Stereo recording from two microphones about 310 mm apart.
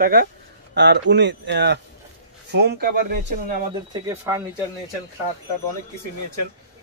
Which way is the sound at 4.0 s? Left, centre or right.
Centre.